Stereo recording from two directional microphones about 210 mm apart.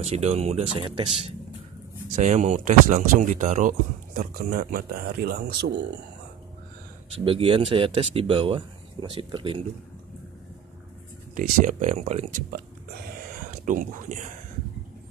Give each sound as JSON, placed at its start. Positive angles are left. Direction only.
{"t": 0.0, "sound": "speech", "side_deg": -30}
{"t": 7.2, "sound": "speech", "side_deg": -25}
{"t": 11.3, "sound": "speech", "side_deg": -40}
{"t": 13.2, "sound": "a sound", "side_deg": -40}